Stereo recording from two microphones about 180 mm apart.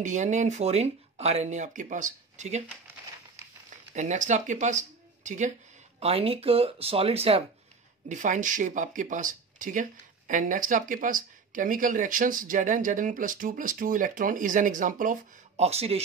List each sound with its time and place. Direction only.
0.0 s speech: 45° right (ahead or behind)
3.9 s speech: 45° right (ahead or behind)
5.9 s speech: 35° right (ahead or behind)
8.1 s speech: 45° right (ahead or behind)